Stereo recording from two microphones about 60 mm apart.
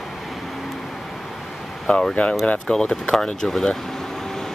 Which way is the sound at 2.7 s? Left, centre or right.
Centre.